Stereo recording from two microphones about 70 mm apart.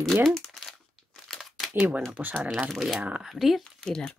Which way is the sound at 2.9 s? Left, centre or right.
Centre.